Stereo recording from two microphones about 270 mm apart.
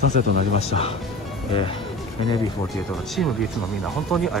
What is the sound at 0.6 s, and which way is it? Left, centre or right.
Speech, left.